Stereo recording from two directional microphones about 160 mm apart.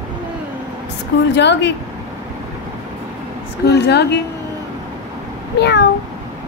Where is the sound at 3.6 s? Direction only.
90° left.